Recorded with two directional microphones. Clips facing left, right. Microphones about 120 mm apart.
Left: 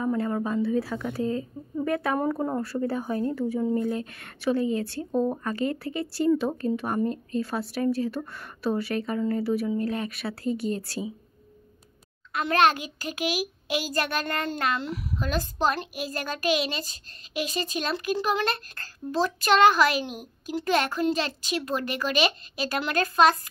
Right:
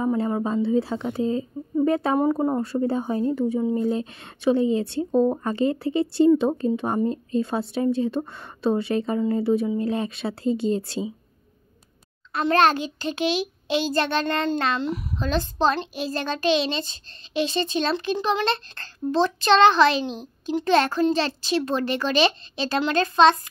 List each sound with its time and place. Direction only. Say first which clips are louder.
0.0 s a child's voice: right 3 dB; 20° right (ahead or behind)
2.1 s a child's voice: right 5 dB; 15° right (ahead or behind)
12.3 s a child's voice: right 3 dB; 35° right (ahead or behind)